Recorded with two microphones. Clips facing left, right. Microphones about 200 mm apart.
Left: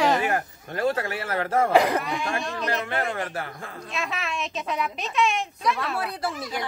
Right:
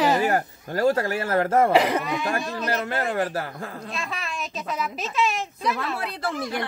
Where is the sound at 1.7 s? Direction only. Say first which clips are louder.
Even; centre (ahead or behind).